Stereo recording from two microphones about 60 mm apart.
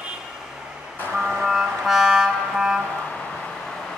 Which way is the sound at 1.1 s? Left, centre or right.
Centre.